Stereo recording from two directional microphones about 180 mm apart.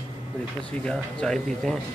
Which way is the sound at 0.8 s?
5° left (ahead or behind).